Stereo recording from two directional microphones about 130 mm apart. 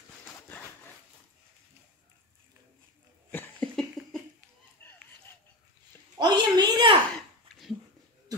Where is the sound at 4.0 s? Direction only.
Centre (ahead or behind).